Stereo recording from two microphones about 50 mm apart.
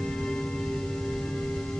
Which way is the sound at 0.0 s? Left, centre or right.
Centre.